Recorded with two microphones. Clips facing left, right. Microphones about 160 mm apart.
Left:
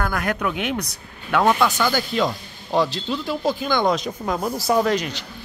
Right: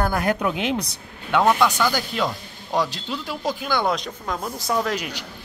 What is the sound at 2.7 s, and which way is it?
Speech, 10° right (ahead or behind).